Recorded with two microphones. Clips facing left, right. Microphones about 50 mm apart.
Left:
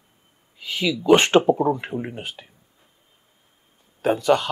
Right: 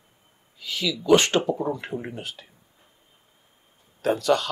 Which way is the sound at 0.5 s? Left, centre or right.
Left.